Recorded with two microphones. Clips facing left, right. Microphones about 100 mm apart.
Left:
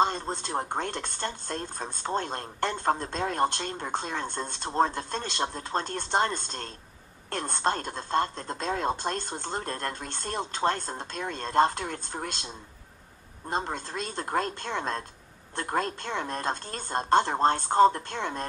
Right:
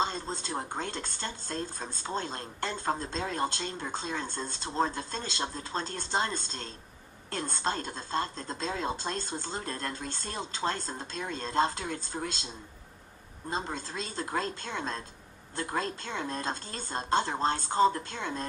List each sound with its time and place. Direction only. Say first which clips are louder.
0.0 s speech: left 5 dB; 55° left (ahead or behind)
13.5 s speech: left 3 dB; 50° left (ahead or behind)